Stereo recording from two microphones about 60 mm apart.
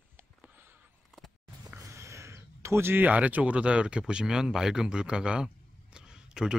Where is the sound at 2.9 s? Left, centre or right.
Right.